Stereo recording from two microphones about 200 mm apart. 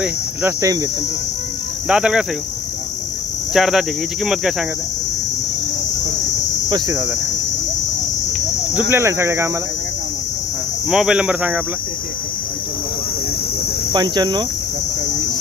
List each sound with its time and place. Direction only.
0.0 s cricket: 10° right (ahead or behind)
1.9 s speech: 5° right (ahead or behind)
3.5 s speech: centre (ahead or behind)
6.7 s cricket: 15° right (ahead or behind)
8.9 s cricket: 15° right (ahead or behind)
10.9 s speech: 5° right (ahead or behind)
13.9 s cricket: 20° right (ahead or behind)